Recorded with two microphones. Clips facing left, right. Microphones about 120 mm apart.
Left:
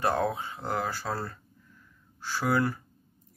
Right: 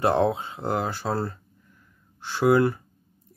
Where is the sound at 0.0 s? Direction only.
25° right (ahead or behind).